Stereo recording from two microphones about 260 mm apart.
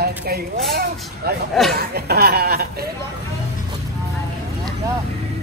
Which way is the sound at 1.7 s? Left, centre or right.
Right.